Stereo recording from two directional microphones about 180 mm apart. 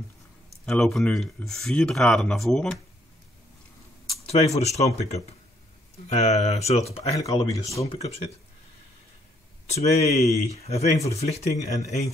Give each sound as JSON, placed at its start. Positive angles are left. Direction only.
{"t": 0.7, "sound": "speech", "side_deg": 5}
{"t": 4.3, "sound": "speech", "side_deg": 35}
{"t": 7.2, "sound": "speech", "side_deg": 20}
{"t": 7.8, "sound": "speech", "side_deg": 35}
{"t": 9.7, "sound": "speech", "side_deg": 35}